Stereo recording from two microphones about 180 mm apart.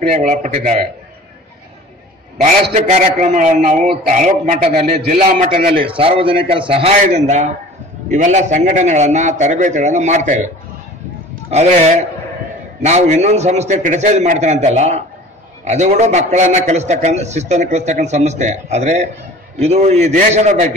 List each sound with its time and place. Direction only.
0.1 s a man's voice: 45° right (ahead or behind)
2.4 s a man's voice: 45° right (ahead or behind)
5.9 s a man's voice: 30° right (ahead or behind)
11.5 s a man's voice: 40° right (ahead or behind)